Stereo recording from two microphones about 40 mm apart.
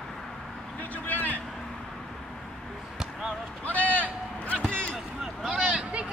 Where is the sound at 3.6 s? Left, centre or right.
Left.